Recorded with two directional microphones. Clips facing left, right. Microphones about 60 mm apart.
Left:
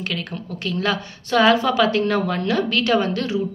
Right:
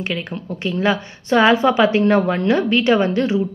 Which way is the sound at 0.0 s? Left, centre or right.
Right.